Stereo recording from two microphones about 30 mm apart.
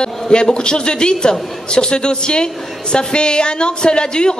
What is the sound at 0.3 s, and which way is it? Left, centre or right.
Speech, left.